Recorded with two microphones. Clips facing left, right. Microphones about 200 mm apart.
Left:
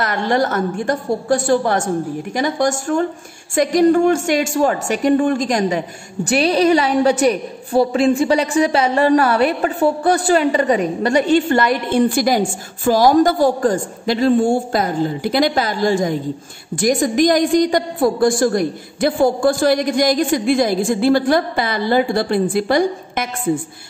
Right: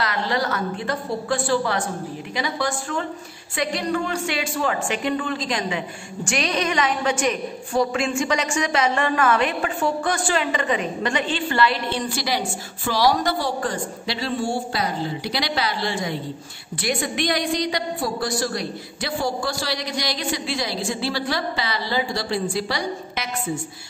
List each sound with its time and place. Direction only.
0.0 s a woman's voice: 50° left (ahead or behind)